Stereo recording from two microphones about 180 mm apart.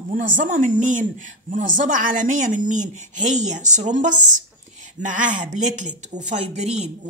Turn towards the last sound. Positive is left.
turn(degrees=-40)  # may be behind; listen again after turning